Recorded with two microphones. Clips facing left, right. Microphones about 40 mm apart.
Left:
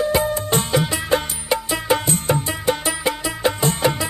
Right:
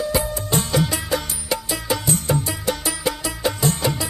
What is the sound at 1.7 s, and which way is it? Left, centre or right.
Music, left.